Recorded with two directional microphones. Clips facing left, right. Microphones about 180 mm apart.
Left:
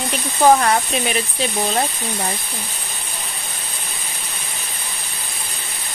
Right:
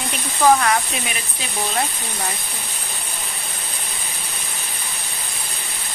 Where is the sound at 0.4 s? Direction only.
30° left (ahead or behind).